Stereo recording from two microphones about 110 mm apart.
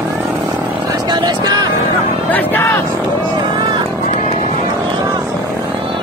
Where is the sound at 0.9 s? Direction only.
40° right (ahead or behind).